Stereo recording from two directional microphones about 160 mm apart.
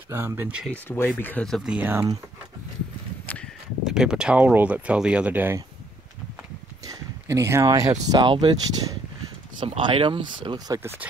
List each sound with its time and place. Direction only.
0.1 s speech: 15° right (ahead or behind)
0.7 s speech: 15° left (ahead or behind); by 2.0 s 10° right (ahead or behind)
3.8 s speech: 5° right (ahead or behind)
6.9 s a sound: 20° right (ahead or behind)
8.0 s speech: 25° right (ahead or behind)
10.7 s speech: 15° right (ahead or behind)